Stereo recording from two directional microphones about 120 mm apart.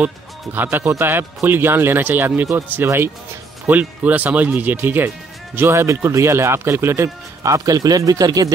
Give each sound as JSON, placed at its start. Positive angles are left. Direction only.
{"t": 0.0, "sound": "speech", "side_deg": -15}